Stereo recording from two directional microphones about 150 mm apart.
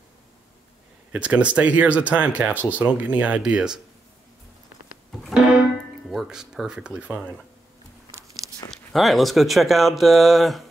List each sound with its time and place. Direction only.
1.1 s speech: 5° right (ahead or behind)
5.2 s music: 5° right (ahead or behind)
6.0 s speech: centre (ahead or behind)
8.1 s a sound: 20° right (ahead or behind)
8.6 s speech: centre (ahead or behind)